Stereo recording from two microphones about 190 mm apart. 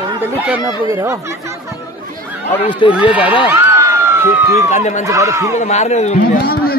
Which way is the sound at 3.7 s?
10° right (ahead or behind).